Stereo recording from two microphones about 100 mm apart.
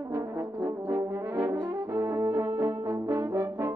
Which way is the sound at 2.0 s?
30° right (ahead or behind).